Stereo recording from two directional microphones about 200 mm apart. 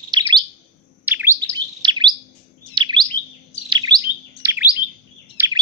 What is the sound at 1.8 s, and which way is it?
Bird, 25° right (ahead or behind).